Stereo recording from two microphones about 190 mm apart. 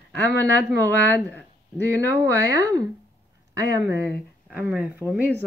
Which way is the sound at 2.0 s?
15° right (ahead or behind).